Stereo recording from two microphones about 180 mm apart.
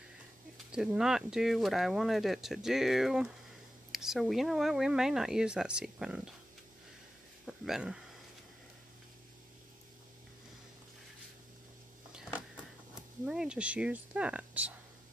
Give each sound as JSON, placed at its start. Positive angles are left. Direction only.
{"t": 0.7, "sound": "speech", "side_deg": -5}
{"t": 7.4, "sound": "a sound", "side_deg": 0}
{"t": 13.2, "sound": "speech", "side_deg": -5}